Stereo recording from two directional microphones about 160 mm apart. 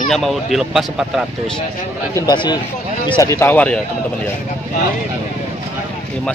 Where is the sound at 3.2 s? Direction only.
15° left (ahead or behind).